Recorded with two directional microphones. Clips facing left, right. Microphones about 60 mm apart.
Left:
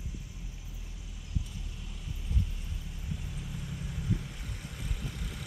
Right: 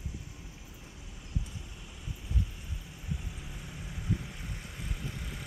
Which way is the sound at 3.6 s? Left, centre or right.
Centre.